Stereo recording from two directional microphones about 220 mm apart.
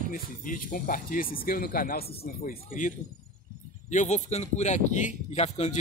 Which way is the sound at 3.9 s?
35° left (ahead or behind).